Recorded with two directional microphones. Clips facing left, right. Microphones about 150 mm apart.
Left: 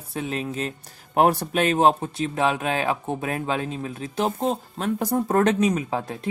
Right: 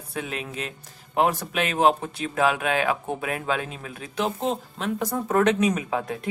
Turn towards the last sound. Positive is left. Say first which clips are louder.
# even
turn(degrees=30)  # may be behind; listen again after turning